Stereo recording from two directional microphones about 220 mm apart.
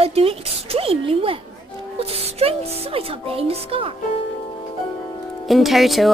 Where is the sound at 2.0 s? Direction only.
25° right (ahead or behind).